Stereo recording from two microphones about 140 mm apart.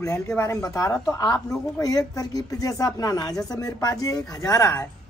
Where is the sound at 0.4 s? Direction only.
25° left (ahead or behind).